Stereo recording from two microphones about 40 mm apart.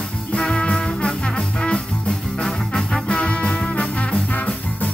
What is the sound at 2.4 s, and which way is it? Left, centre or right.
Music, left.